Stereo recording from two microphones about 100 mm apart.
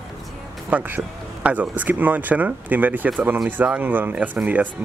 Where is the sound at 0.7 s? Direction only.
20° right (ahead or behind).